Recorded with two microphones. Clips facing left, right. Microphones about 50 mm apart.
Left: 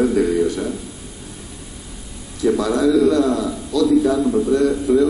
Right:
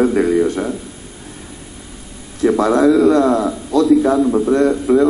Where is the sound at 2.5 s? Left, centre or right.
Right.